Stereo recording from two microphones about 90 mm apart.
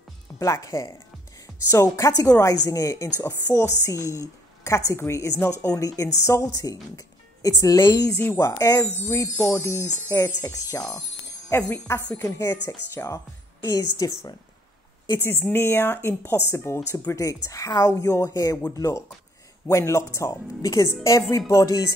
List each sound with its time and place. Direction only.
0.4 s a woman's voice: 40° left (ahead or behind)
13.6 s a woman's voice: 45° left (ahead or behind)
15.1 s a woman's voice: 25° left (ahead or behind)